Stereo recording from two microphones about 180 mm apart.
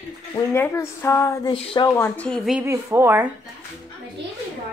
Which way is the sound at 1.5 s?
30° left (ahead or behind).